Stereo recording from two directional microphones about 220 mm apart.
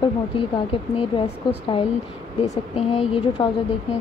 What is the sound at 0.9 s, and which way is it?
Speech, 25° left (ahead or behind).